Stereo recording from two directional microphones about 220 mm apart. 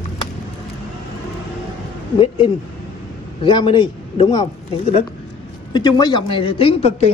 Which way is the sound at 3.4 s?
20° left (ahead or behind).